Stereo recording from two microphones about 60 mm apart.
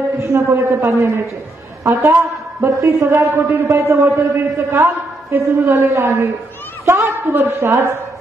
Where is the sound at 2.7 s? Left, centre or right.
Right.